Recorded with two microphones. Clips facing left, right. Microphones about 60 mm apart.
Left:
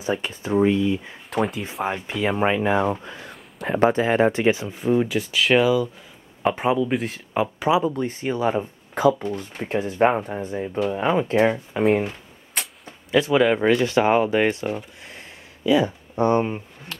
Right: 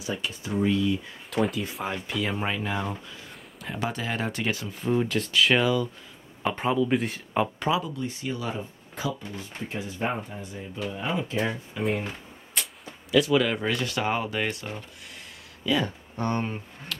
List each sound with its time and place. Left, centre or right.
0.0 s speech: left; by 7.7 s centre
7.8 s speech: left
8.9 s speech: left
10.9 s speech: left
13.1 s speech: left
15.6 s speech: centre